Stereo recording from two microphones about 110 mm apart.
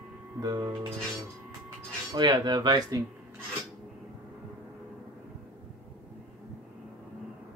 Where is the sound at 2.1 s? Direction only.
40° right (ahead or behind).